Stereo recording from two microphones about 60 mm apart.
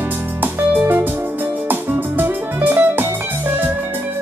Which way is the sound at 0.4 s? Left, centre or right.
Right.